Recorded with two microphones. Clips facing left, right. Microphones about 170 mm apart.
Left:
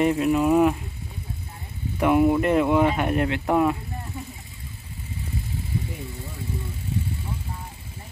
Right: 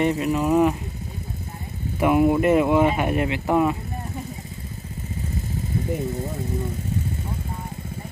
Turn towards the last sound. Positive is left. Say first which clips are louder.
# right 7 dB
turn(degrees=-45)  # may be behind; listen again after turning